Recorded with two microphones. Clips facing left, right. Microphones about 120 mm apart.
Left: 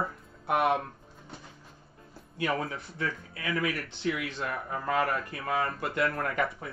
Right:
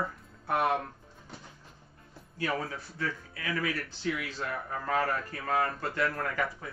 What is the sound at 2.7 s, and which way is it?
A man's voice, 25° left (ahead or behind).